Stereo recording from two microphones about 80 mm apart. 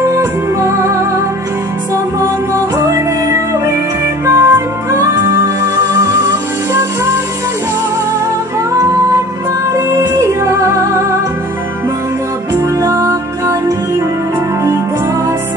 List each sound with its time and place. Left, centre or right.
0.1 s music: right
2.1 s music: right
4.3 s music: right
9.8 s music: right
12.8 s music: right